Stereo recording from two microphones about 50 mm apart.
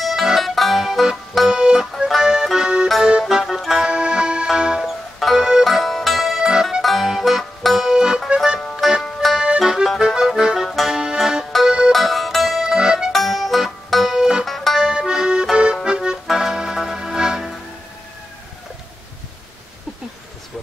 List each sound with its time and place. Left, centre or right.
0.0 s music: centre
1.6 s music: centre
3.8 s accordion: centre
4.6 s music: centre
4.8 s music: centre
6.5 s music: centre
6.8 s music: centre
7.9 s music: centre
9.2 s accordion: centre
11.5 s music: centre
13.1 s accordion: centre
14.4 s music: centre
14.8 s accordion: centre
16.3 s music: centre